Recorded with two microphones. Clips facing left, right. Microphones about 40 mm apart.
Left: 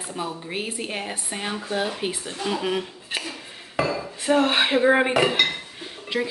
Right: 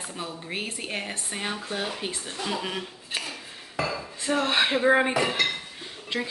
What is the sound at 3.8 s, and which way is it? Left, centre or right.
Speech, centre.